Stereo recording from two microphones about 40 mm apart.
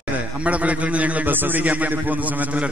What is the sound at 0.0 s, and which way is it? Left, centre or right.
A man's voice, right.